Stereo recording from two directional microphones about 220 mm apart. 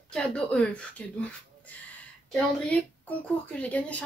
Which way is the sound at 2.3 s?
5° left (ahead or behind).